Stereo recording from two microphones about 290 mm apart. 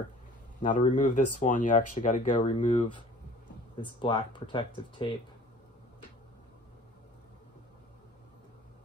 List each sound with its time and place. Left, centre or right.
0.6 s speech: left